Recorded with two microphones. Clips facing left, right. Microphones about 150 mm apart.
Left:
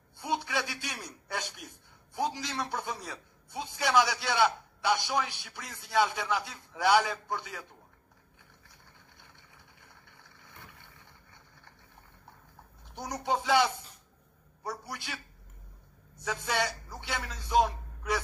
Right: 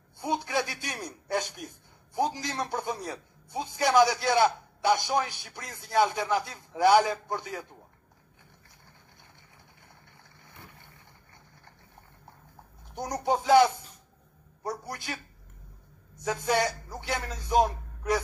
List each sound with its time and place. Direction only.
0.2 s a man's voice: 45° right (ahead or behind)
12.9 s a man's voice: 45° right (ahead or behind)
16.2 s a man's voice: 45° right (ahead or behind)